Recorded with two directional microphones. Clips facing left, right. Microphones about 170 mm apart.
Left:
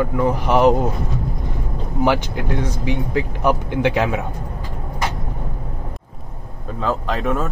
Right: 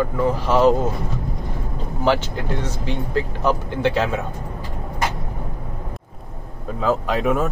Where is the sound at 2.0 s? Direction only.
15° left (ahead or behind).